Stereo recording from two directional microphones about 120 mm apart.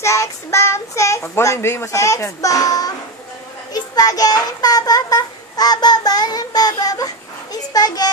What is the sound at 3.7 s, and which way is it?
A child's voice, 35° left (ahead or behind).